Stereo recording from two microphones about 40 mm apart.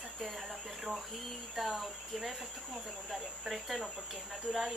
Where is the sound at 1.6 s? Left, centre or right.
Centre.